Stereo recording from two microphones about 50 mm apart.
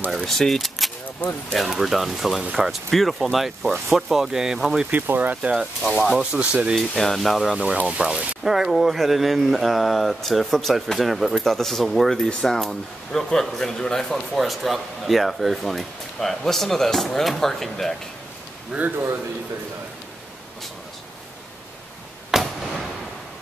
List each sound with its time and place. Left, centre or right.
0.1 s speech: centre
4.9 s speech: right
5.3 s speech: right
5.8 s speech: centre
6.3 s speech: right
6.7 s speech: centre
8.0 s speech: centre
8.5 s speech: centre
18.7 s speech: right
22.3 s a sound: centre